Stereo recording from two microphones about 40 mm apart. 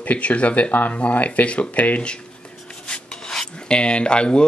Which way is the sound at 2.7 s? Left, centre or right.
Left.